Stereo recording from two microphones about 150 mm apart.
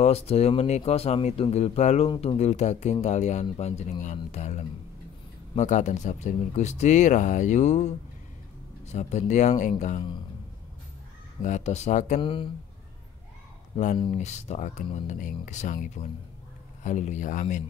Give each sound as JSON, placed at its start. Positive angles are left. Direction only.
{"t": 0.0, "sound": "speech", "side_deg": 45}
{"t": 11.4, "sound": "speech", "side_deg": 50}
{"t": 12.2, "sound": "speech", "side_deg": 35}
{"t": 13.7, "sound": "speech", "side_deg": 50}